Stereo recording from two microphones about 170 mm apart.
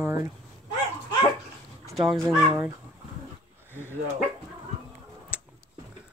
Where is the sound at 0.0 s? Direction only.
15° right (ahead or behind).